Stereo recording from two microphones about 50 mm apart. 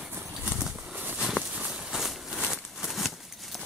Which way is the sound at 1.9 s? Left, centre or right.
Centre.